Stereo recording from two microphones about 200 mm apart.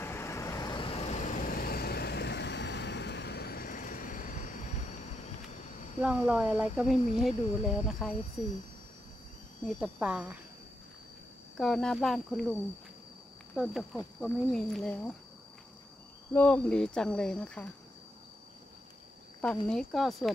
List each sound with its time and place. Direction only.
0.0 s vehicle: 10° left (ahead or behind); by 5.0 s 40° left (ahead or behind)
5.5 s a sound: 35° left (ahead or behind)
6.0 s speech: 10° right (ahead or behind)
9.7 s speech: 5° right (ahead or behind)
11.5 s speech: 5° left (ahead or behind)
13.6 s speech: centre (ahead or behind)
16.3 s speech: 5° left (ahead or behind)
19.4 s speech: 5° left (ahead or behind)